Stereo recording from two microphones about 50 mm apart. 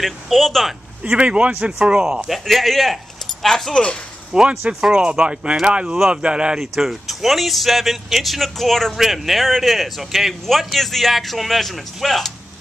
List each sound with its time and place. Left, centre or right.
0.0 s speech: centre
1.0 s speech: right
2.2 s speech: centre
4.3 s speech: centre
6.6 s speech: centre